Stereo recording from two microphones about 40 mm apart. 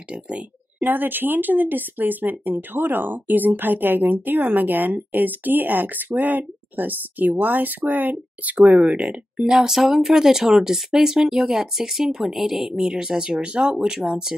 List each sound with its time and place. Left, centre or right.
0.1 s a woman's voice: right
0.8 s speech: right
8.5 s speech: right
8.9 s speech: centre